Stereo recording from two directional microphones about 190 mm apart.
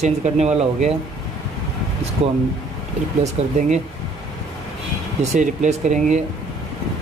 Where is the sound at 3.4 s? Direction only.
35° right (ahead or behind).